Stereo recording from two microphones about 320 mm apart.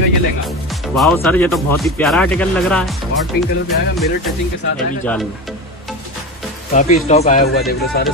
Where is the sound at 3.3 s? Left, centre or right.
Left.